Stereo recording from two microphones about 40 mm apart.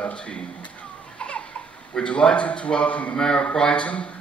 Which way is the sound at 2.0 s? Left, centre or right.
Left.